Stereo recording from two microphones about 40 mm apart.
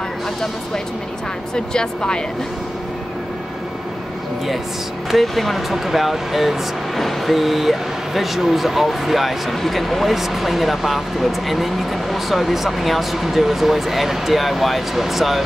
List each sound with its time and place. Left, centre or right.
1.5 s speech: centre
5.1 s speech: centre